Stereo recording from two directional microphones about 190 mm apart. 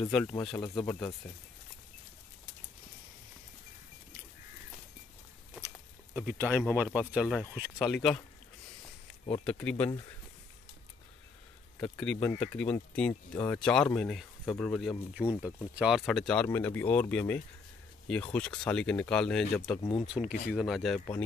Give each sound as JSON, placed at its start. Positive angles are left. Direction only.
{"t": 0.1, "sound": "speech", "side_deg": 10}
{"t": 0.4, "sound": "speech", "side_deg": 20}
{"t": 6.1, "sound": "speech", "side_deg": -5}
{"t": 9.4, "sound": "speech", "side_deg": 5}
{"t": 12.0, "sound": "speech", "side_deg": 5}
{"t": 15.2, "sound": "speech", "side_deg": 15}
{"t": 15.7, "sound": "speech", "side_deg": -5}